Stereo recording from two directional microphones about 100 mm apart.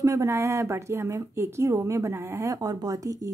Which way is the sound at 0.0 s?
30° right (ahead or behind).